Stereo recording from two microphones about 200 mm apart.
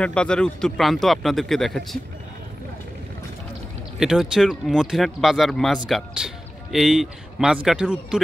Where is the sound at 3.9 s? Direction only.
5° right (ahead or behind).